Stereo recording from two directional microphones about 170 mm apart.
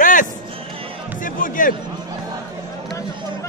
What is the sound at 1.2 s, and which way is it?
Music, 55° left (ahead or behind).